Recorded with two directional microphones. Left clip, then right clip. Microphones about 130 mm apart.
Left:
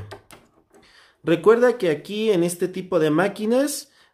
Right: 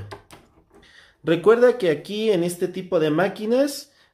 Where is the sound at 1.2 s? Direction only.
25° left (ahead or behind).